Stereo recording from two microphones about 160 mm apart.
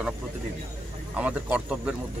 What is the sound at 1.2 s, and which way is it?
Speech, 10° right (ahead or behind).